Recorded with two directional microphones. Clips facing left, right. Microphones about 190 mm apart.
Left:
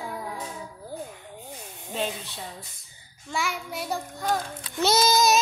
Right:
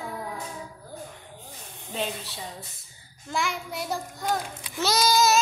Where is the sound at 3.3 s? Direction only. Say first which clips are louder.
Right 1 dB; centre (ahead or behind).